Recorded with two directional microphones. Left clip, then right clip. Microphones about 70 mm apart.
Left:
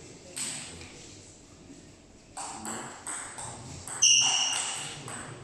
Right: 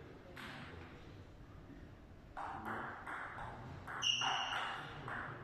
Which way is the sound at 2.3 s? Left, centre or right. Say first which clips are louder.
Left 5 dB; left.